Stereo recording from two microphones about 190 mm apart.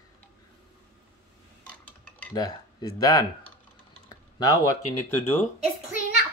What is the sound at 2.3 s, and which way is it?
Speech, 20° left (ahead or behind).